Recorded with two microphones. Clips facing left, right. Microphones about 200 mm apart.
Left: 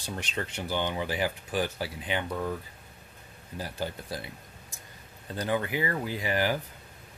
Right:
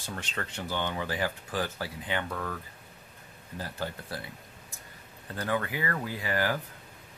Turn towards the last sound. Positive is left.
turn(degrees=20)  # may be behind; listen again after turning